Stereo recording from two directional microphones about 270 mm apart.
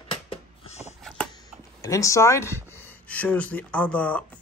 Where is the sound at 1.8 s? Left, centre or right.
Centre.